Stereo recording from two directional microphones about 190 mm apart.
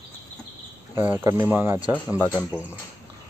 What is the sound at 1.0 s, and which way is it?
Speech, 10° right (ahead or behind).